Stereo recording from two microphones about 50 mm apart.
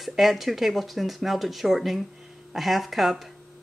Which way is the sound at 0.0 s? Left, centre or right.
Centre.